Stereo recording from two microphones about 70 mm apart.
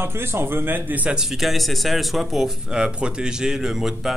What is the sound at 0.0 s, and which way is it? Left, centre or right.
A man's voice, right.